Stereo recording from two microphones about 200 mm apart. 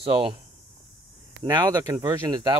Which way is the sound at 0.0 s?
25° right (ahead or behind).